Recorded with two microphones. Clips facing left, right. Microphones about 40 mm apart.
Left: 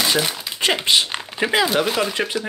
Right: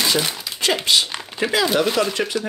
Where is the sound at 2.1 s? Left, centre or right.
Centre.